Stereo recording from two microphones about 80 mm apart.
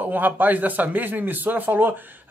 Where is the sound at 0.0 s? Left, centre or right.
Right.